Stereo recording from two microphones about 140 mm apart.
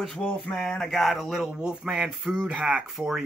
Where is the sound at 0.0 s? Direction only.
5° left (ahead or behind).